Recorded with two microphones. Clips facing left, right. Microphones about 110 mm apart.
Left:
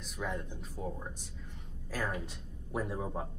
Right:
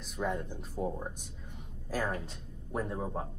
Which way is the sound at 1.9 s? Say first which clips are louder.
Right 3 dB; 10° right (ahead or behind).